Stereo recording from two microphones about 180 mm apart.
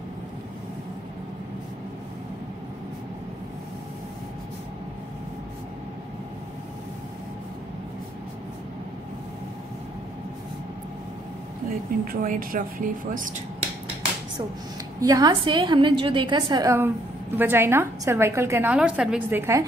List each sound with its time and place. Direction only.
12.0 s speech: 50° right (ahead or behind)
15.0 s a woman's voice: 20° right (ahead or behind)